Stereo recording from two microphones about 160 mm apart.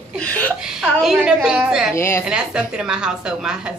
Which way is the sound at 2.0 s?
15° left (ahead or behind).